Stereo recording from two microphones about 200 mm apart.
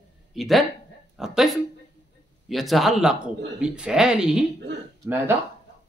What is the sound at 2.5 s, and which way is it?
A man's voice, centre (ahead or behind).